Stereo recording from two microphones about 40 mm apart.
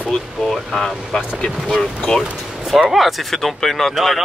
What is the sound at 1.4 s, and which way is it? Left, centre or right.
Speech, centre.